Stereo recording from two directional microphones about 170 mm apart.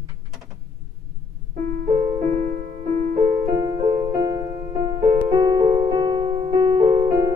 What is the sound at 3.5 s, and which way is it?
Music, 20° right (ahead or behind).